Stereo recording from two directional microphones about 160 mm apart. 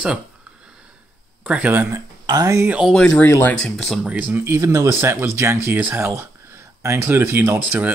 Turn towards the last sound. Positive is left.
turn(degrees=-10)  # may be behind; listen again after turning